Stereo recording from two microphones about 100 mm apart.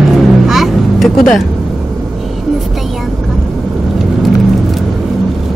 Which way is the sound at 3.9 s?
Centre (ahead or behind).